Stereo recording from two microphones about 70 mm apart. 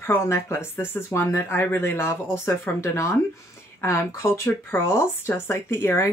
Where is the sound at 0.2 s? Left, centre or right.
Left.